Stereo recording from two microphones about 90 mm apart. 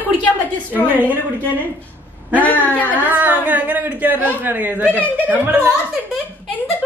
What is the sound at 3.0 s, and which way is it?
Speech, 20° right (ahead or behind).